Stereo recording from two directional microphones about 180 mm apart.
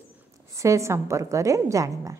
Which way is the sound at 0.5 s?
15° right (ahead or behind).